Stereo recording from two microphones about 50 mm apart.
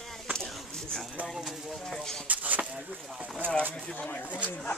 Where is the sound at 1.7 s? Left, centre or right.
Centre.